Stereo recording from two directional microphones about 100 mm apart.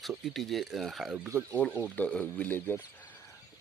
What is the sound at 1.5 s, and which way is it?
Speech, 10° left (ahead or behind).